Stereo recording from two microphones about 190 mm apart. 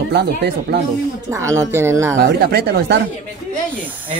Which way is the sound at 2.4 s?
55° right (ahead or behind).